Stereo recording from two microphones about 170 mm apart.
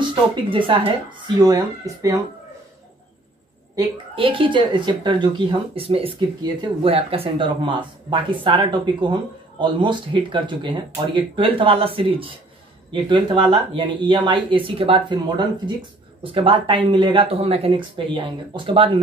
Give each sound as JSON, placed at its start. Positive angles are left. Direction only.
{"t": 0.0, "sound": "speech", "side_deg": -30}
{"t": 3.7, "sound": "speech", "side_deg": -30}